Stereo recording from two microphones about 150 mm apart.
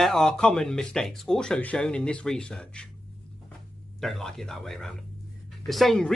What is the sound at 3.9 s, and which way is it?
Speech, centre (ahead or behind).